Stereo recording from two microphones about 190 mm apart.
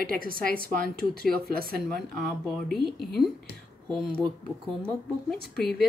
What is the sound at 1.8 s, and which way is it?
Speech, centre (ahead or behind).